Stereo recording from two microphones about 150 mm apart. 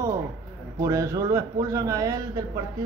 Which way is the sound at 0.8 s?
20° right (ahead or behind).